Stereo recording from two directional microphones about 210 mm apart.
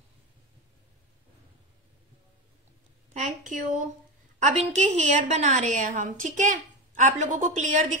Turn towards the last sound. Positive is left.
turn(degrees=-35)  # may be behind; listen again after turning